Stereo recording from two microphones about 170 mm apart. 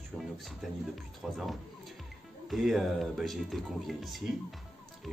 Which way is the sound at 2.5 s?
Centre (ahead or behind).